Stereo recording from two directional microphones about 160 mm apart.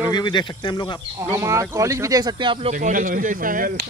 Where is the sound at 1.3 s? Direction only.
15° right (ahead or behind).